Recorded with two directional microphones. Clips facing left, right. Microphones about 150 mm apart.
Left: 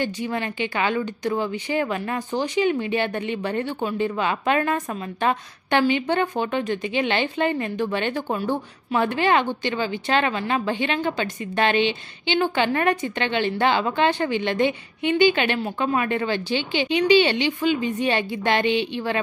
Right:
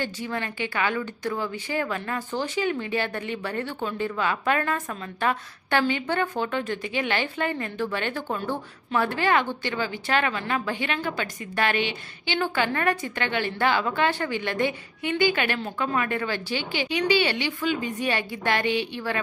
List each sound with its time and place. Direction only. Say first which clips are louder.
0.0 s speech: left 4 dB; 20° left (ahead or behind)